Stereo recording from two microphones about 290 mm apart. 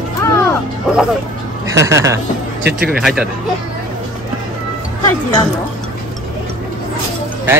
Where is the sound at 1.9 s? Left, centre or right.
Centre.